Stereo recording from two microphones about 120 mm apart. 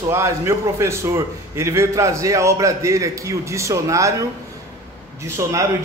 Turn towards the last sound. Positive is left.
turn(degrees=-25)  # may be behind; listen again after turning